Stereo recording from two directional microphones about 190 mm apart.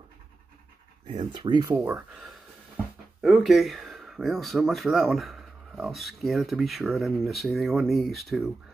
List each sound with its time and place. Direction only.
1.0 s speech: 25° right (ahead or behind)
1.9 s speech: 5° right (ahead or behind)